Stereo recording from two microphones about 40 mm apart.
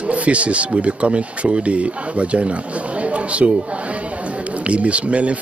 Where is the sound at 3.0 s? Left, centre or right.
Right.